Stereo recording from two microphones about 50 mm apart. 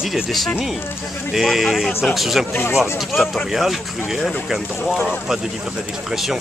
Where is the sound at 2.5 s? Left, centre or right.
Left.